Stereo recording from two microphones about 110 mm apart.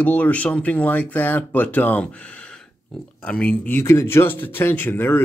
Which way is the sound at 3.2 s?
10° left (ahead or behind).